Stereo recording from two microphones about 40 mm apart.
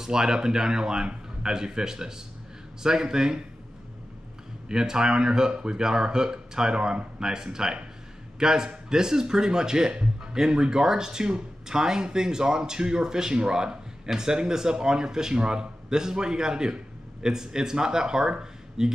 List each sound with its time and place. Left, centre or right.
0.0 s speech: centre
4.6 s speech: centre